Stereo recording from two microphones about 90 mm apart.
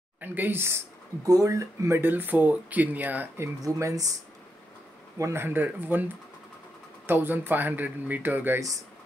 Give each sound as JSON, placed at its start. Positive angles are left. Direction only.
{"t": 0.2, "sound": "speech", "side_deg": -20}
{"t": 1.2, "sound": "speech", "side_deg": -35}
{"t": 2.0, "sound": "speech", "side_deg": -20}
{"t": 3.6, "sound": "speech", "side_deg": -40}
{"t": 5.2, "sound": "speech", "side_deg": -25}
{"t": 7.1, "sound": "speech", "side_deg": -20}